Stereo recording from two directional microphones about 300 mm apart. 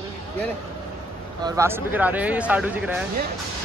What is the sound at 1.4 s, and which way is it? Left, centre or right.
Speech, centre.